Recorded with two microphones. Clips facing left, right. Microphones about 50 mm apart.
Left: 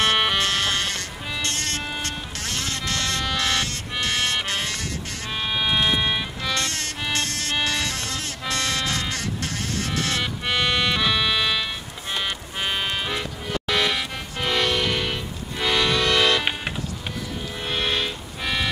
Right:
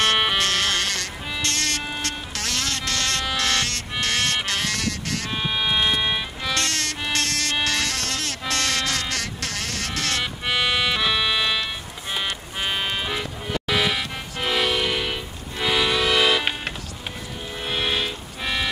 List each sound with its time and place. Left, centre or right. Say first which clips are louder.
0.0 s music: even; centre
0.9 s insect: right 1 dB; right
2.8 s insect: right 1 dB; centre
3.3 s music: right 1 dB; centre
4.7 s sheep: right 4 dB; right
5.3 s music: left 1 dB; centre
7.2 s music: right 2 dB; right
7.6 s music: even; centre
8.1 s music: right 2 dB; right
8.5 s a sound: even; centre
9.1 s insect: even; right
9.8 s music: even; centre
10.4 s music: even; centre
17.6 s a sound: even; centre